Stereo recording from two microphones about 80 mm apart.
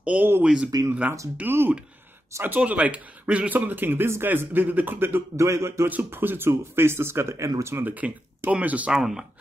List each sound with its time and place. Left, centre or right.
0.0 s speech: centre
0.7 s speech: right
1.4 s a man's voice: right
5.9 s speech: right
7.7 s a man's voice: right
8.9 s speech: centre